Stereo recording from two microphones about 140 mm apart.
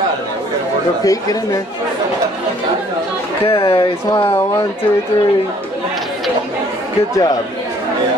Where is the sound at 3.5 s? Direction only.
40° left (ahead or behind).